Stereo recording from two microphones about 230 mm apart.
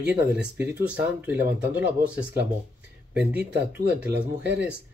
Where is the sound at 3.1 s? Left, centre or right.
Right.